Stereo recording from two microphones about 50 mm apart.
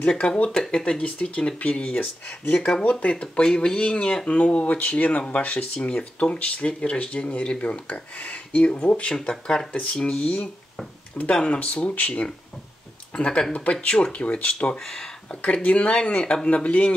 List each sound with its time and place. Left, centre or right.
0.0 s speech: centre
9.7 s speech: left
13.1 s speech: centre
14.8 s speech: centre
15.4 s speech: left